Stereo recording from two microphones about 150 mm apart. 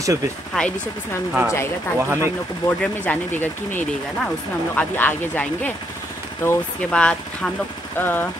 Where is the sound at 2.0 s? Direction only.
15° right (ahead or behind).